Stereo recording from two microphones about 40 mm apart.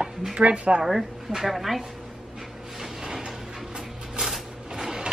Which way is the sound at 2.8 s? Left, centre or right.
Centre.